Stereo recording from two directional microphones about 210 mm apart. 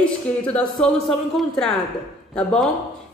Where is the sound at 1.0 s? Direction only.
Centre (ahead or behind).